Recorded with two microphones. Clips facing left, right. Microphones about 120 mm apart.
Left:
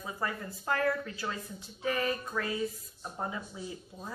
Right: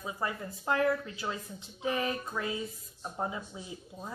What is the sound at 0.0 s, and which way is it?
Speech, 15° right (ahead or behind).